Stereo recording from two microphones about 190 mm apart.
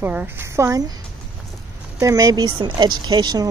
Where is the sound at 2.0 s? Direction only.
15° right (ahead or behind).